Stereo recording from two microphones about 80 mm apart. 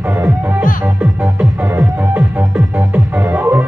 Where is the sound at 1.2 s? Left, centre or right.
Centre.